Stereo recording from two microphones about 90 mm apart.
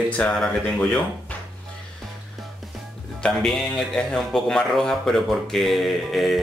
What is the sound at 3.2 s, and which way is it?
A man's voice, 5° left (ahead or behind).